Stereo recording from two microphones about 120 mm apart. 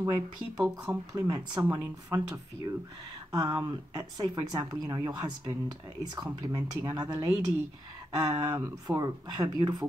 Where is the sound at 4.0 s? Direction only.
35° right (ahead or behind).